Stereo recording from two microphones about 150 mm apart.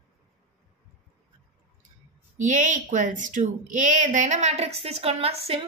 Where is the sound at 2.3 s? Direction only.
55° right (ahead or behind).